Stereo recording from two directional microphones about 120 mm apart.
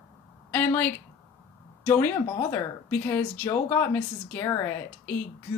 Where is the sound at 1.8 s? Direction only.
15° left (ahead or behind).